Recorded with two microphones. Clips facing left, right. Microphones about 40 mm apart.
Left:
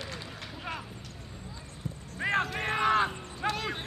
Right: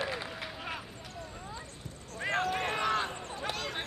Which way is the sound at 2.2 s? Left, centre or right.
Left.